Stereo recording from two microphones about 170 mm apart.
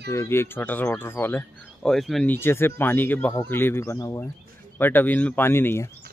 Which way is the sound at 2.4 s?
15° left (ahead or behind).